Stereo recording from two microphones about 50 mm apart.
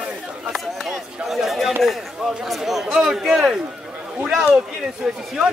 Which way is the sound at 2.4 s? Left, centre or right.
Centre.